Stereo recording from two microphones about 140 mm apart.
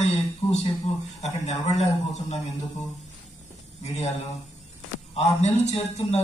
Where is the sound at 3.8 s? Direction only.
55° left (ahead or behind).